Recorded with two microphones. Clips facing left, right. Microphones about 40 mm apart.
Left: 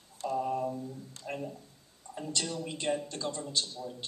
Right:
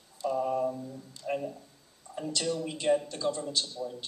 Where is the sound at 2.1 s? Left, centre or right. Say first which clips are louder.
Right 2 dB; right.